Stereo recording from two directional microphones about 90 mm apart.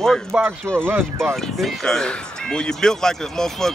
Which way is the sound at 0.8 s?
20° right (ahead or behind).